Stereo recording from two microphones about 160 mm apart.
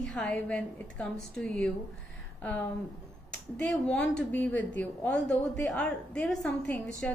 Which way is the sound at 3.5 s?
5° left (ahead or behind).